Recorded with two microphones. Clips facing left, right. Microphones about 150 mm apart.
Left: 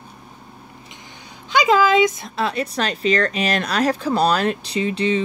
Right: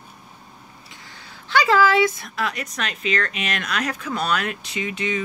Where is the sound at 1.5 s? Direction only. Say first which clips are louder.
Left 2 dB; 15° left (ahead or behind).